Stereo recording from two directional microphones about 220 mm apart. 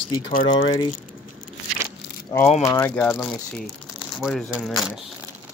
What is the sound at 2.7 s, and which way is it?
Speech, 10° left (ahead or behind).